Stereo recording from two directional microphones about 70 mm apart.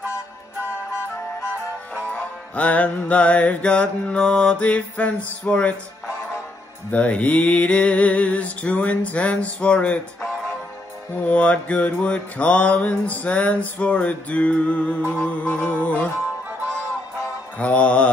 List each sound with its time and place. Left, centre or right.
2.1 s mantra: left
6.9 s mantra: centre
11.1 s mantra: centre
17.6 s mantra: centre